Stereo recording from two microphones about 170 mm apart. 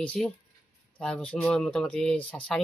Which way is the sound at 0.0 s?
5° left (ahead or behind).